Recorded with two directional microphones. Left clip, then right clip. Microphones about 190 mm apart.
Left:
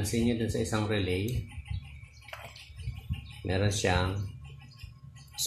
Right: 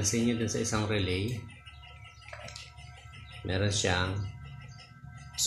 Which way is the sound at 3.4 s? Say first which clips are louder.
Left 1 dB; 20° left (ahead or behind).